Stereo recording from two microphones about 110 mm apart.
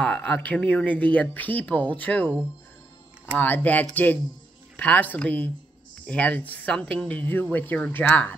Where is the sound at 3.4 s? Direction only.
15° left (ahead or behind).